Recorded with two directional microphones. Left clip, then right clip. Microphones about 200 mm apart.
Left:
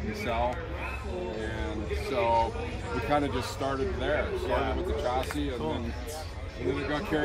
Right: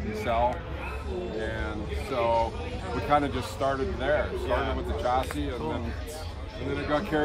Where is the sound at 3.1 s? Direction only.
15° right (ahead or behind).